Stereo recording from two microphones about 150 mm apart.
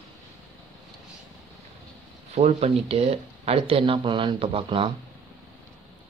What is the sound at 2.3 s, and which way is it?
Speech, 45° right (ahead or behind).